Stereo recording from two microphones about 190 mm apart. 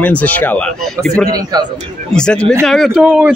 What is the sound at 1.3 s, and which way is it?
Speech, 20° right (ahead or behind).